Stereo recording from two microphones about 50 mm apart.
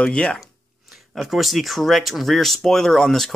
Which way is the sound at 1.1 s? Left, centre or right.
Centre.